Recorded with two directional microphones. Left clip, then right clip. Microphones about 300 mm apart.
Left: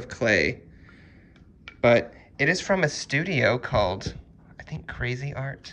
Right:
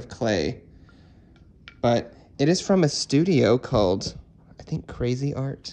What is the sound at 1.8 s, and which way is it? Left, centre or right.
Speech, centre.